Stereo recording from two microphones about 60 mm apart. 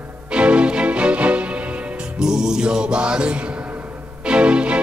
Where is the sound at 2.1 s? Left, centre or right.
Centre.